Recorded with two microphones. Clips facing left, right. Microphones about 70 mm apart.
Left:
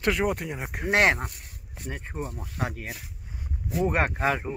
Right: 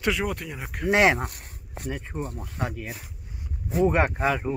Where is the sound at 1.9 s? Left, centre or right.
Centre.